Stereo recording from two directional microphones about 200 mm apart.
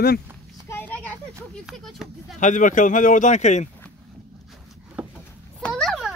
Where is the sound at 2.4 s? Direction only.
40° left (ahead or behind).